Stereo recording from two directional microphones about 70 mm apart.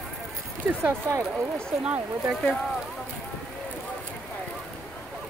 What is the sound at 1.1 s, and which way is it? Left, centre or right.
Speech, right.